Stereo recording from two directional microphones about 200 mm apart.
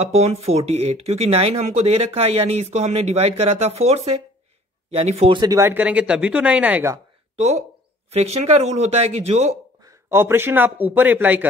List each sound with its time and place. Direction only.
0.1 s speech: 30° right (ahead or behind); by 7.0 s 10° right (ahead or behind)
8.1 s speech: 30° right (ahead or behind)
9.8 s speech: 15° right (ahead or behind)